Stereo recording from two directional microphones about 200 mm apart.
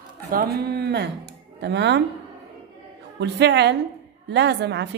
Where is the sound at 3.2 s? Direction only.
60° right (ahead or behind).